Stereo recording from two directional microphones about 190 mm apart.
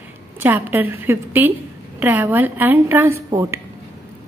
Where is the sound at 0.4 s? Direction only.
10° right (ahead or behind).